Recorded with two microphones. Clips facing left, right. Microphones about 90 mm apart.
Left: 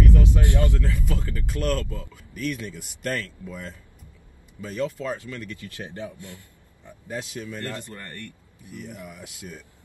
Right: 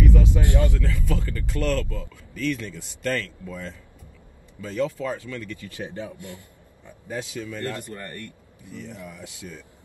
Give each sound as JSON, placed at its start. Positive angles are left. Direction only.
{"t": 0.0, "sound": "a sound", "side_deg": -20}
{"t": 0.5, "sound": "speech", "side_deg": -20}
{"t": 0.7, "sound": "speech", "side_deg": 20}
{"t": 4.6, "sound": "speech", "side_deg": 20}
{"t": 5.7, "sound": "speech", "side_deg": -20}
{"t": 7.1, "sound": "speech", "side_deg": 20}
{"t": 7.7, "sound": "speech", "side_deg": -20}
{"t": 8.6, "sound": "speech", "side_deg": 15}